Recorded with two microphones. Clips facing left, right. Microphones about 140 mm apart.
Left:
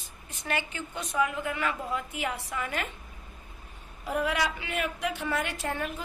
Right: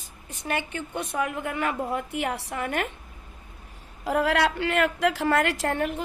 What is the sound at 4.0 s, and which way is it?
A woman's voice, 90° right.